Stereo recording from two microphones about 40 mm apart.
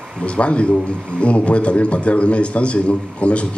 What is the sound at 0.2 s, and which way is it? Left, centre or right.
A man's voice, left.